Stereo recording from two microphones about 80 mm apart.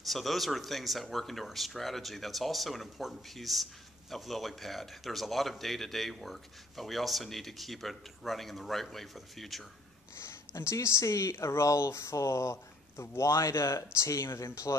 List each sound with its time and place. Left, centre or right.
0.0 s speech: centre
10.2 s speech: left